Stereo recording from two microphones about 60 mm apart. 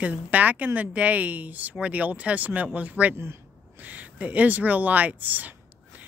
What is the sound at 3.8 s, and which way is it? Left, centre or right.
Speech, right.